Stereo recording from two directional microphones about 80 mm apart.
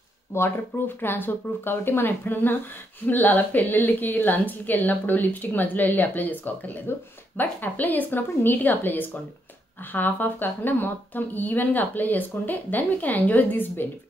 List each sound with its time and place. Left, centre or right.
0.3 s speech: left